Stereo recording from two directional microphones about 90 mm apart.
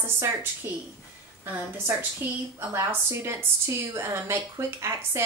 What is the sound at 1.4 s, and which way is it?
A woman's voice, 20° right (ahead or behind).